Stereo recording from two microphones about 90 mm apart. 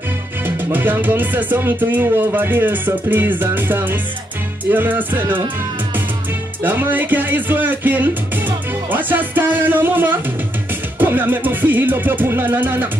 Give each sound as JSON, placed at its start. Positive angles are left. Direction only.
{"t": 0.7, "sound": "speech", "side_deg": -20}
{"t": 6.6, "sound": "speech", "side_deg": -20}